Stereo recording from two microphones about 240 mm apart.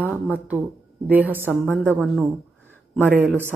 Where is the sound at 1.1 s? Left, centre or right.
Centre.